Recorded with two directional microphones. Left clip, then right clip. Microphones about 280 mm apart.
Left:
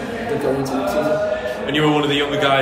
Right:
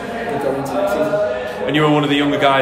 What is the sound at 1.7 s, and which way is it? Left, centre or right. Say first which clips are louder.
Speech: right 2 dB; right.